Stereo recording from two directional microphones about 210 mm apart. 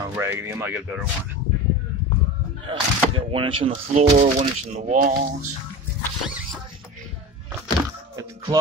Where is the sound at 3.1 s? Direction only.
25° right (ahead or behind); by 5.5 s 45° right (ahead or behind).